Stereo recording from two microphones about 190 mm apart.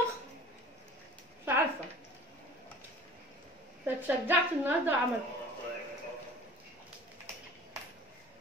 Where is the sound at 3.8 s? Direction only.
10° right (ahead or behind).